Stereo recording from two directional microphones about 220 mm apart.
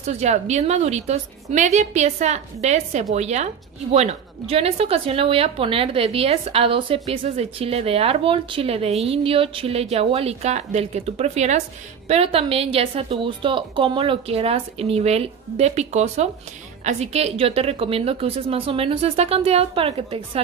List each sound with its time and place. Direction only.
0.0 s a woman's voice: 30° right (ahead or behind)